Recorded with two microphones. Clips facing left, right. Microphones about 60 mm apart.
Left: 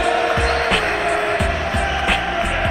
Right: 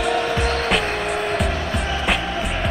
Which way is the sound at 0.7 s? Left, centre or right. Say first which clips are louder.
Left 3 dB; centre.